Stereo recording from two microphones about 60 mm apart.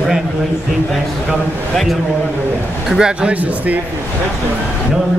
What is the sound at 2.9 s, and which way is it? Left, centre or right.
Speech, centre.